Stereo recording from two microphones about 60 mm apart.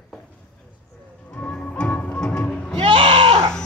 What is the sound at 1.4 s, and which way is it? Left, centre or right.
Music, centre.